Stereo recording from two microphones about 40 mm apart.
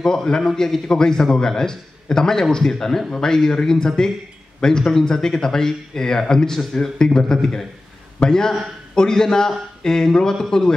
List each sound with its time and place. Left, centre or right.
0.0 s speech: centre